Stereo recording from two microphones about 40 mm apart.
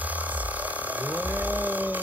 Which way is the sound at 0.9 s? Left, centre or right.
Right.